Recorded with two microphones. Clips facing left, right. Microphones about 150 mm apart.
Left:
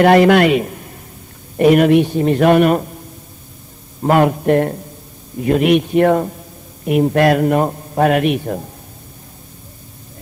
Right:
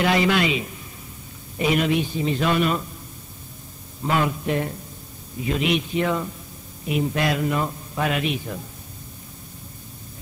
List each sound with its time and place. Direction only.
0.0 s a man's voice: 55° left (ahead or behind)
4.0 s a man's voice: 55° left (ahead or behind)